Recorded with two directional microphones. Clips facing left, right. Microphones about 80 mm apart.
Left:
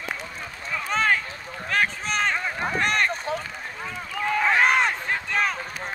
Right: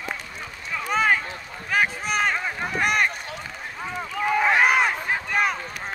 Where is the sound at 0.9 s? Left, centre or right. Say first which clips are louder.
Right 2 dB; centre.